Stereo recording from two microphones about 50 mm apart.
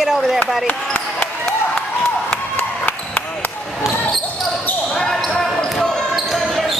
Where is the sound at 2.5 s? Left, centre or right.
Left.